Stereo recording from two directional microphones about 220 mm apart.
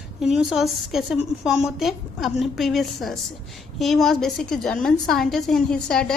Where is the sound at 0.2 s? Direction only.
Centre (ahead or behind).